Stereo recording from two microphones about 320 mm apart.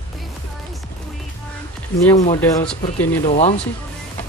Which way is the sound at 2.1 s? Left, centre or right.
Centre.